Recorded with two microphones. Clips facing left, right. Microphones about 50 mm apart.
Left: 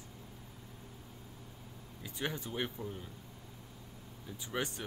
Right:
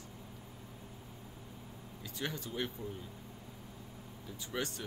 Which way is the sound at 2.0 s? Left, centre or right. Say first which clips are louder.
Left 2 dB; centre.